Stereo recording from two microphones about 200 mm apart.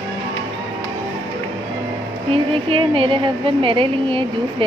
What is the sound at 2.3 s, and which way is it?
A woman's voice, 30° right (ahead or behind).